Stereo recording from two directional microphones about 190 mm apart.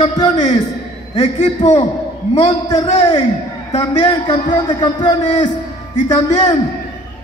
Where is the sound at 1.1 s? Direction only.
35° left (ahead or behind).